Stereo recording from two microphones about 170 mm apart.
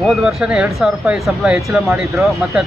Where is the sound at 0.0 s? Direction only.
Centre (ahead or behind).